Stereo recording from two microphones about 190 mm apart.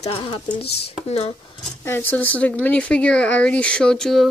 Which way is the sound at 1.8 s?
10° left (ahead or behind).